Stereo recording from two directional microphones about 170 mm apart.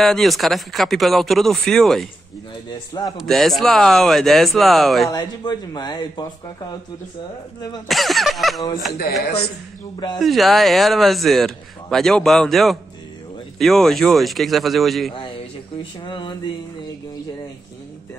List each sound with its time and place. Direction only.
0.0 s a man's voice: centre (ahead or behind)
3.2 s a man's voice: centre (ahead or behind)
5.1 s speech: 25° left (ahead or behind)
7.9 s a man's voice: centre (ahead or behind)
9.2 s a man's voice: 70° left (ahead or behind)
10.1 s a man's voice: centre (ahead or behind)
15.8 s speech: 25° left (ahead or behind)